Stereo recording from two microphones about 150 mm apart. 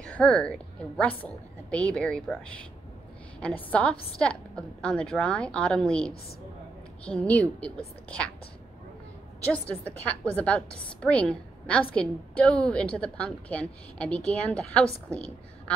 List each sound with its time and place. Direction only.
0.0 s a woman's voice: 5° left (ahead or behind)
3.3 s a woman's voice: 10° left (ahead or behind)
9.5 s a woman's voice: 10° left (ahead or behind)
15.1 s a sound: 5° left (ahead or behind)